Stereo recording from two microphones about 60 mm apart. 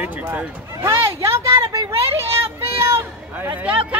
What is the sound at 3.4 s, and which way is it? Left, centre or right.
Speech, right.